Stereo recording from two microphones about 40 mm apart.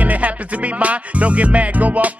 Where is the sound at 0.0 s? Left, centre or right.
Right.